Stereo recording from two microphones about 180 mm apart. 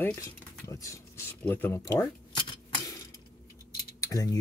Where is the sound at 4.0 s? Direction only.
20° left (ahead or behind).